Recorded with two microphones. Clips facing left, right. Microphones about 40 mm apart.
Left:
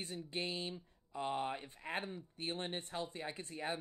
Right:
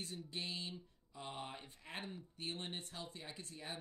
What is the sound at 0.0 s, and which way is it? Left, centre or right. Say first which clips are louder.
Speech: left 4 dB; left.